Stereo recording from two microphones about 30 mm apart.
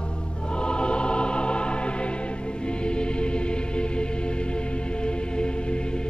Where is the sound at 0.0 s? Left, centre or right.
Left.